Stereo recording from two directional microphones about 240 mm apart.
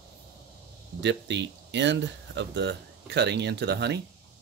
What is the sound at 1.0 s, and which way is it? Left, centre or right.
Speech, right.